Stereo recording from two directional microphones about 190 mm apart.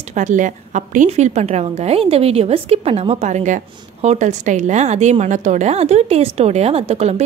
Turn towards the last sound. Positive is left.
turn(degrees=-35)  # may be behind; listen again after turning